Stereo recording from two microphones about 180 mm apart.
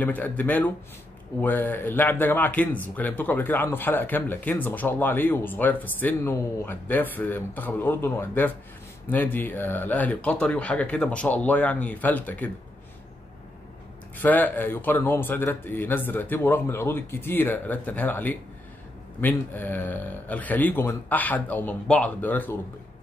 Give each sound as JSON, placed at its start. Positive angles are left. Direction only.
{"t": 0.0, "sound": "speech", "side_deg": 10}
{"t": 14.1, "sound": "speech", "side_deg": 10}